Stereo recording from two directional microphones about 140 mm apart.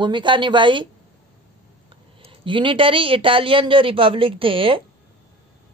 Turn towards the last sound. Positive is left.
turn(degrees=-40)  # may be behind; listen again after turning